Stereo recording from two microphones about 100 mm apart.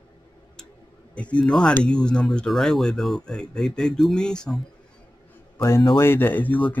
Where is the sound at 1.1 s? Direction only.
10° left (ahead or behind).